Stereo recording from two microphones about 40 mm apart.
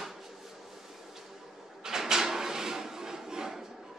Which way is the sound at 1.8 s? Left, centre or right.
Centre.